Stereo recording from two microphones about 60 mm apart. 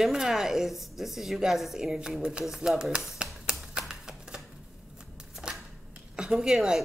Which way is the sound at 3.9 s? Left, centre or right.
Centre.